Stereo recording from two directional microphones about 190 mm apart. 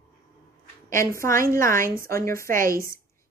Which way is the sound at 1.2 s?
15° left (ahead or behind).